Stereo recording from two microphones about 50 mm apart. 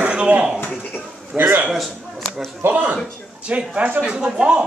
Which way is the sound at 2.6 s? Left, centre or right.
Right.